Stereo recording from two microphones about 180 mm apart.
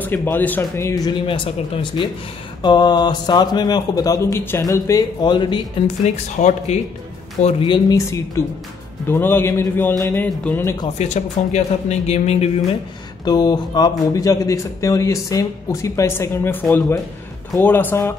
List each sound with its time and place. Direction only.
0.0 s speech: 10° left (ahead or behind)
6.0 s speech: 40° left (ahead or behind)
7.6 s speech: 20° left (ahead or behind)
11.0 s speech: 40° left (ahead or behind)
13.2 s speech: 20° left (ahead or behind)